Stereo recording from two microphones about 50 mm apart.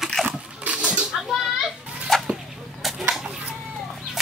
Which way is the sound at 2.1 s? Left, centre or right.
Centre.